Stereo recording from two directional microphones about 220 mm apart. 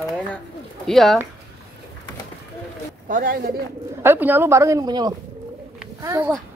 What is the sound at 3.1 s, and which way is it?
Speech, 40° right (ahead or behind).